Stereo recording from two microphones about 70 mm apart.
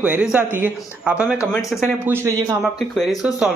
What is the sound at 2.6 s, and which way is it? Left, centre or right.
Speech, centre.